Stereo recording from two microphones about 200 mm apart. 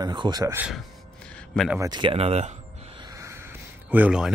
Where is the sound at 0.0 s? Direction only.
20° right (ahead or behind).